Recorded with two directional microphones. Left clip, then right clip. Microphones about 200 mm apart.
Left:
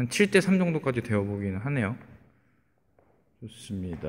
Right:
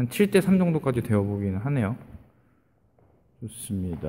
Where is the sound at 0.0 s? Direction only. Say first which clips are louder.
Right 1 dB; centre (ahead or behind).